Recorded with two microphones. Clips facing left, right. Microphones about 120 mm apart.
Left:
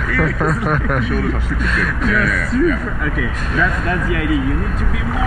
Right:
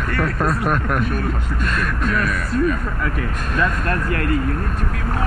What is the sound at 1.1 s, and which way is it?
Speech, 45° right (ahead or behind).